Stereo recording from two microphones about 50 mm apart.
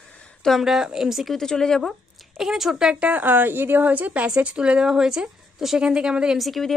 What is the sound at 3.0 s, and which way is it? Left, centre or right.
A woman's voice, right.